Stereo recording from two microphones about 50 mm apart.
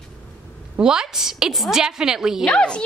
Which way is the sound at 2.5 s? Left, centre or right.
Centre.